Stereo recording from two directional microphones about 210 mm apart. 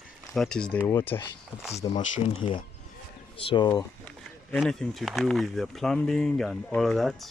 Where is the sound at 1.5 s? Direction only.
5° right (ahead or behind).